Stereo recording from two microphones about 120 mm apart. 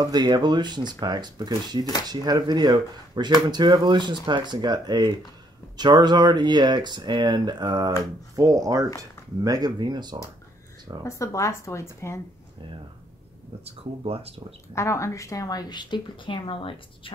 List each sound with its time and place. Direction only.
0.0 s speech: 35° right (ahead or behind)
11.1 s speech: 25° left (ahead or behind)
13.7 s speech: 55° right (ahead or behind)
14.7 s speech: 25° left (ahead or behind); by 17.1 s 45° left (ahead or behind)